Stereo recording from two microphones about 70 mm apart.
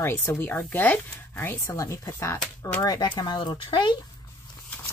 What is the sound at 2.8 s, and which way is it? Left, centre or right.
Speech, left.